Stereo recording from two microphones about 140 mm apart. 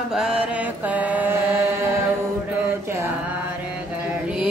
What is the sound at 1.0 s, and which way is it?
Mantra, 10° right (ahead or behind).